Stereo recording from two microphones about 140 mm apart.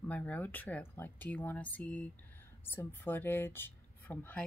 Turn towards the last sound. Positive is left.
turn(degrees=10)  # may be behind; listen again after turning